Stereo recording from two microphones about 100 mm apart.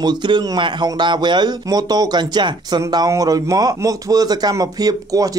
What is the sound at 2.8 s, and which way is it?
A man's voice, 35° right (ahead or behind).